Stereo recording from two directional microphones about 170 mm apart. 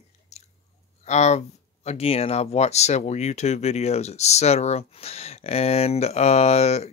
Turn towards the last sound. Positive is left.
turn(degrees=40)  # may be behind; listen again after turning